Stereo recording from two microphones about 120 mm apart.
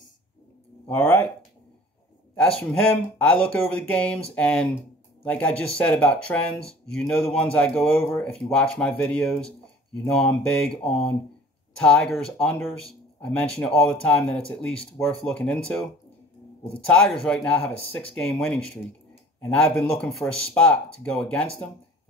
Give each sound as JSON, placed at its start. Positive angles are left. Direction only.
{"t": 0.8, "sound": "speech", "side_deg": 15}
{"t": 2.3, "sound": "speech", "side_deg": 5}